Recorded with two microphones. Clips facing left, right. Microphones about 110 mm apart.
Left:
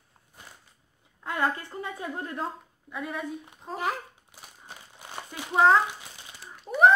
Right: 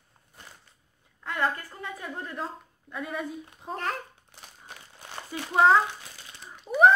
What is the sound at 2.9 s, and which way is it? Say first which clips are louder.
Female singing: even; centre (ahead or behind).